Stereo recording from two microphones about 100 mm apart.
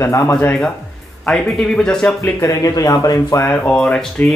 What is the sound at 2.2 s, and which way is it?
Speech, 30° left (ahead or behind).